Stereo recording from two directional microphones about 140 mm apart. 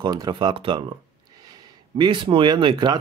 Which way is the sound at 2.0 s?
35° right (ahead or behind).